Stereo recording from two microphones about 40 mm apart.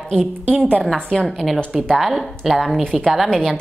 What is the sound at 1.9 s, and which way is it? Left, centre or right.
Speech, centre.